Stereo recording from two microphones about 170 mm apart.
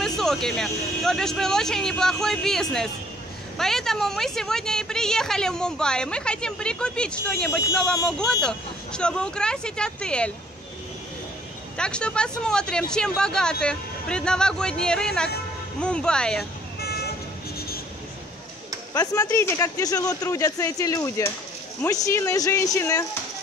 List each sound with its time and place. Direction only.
0.0 s a woman's voice: 5° left (ahead or behind)
11.7 s a woman's voice: 5° left (ahead or behind)
16.8 s vehicle: 70° left (ahead or behind)
18.9 s speech: 15° left (ahead or behind)